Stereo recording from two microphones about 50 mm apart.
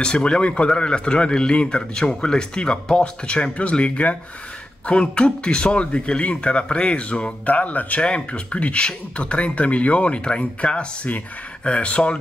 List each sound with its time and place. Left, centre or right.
0.0 s speech: centre